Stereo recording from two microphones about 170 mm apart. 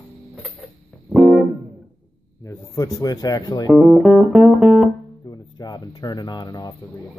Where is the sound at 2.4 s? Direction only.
20° left (ahead or behind).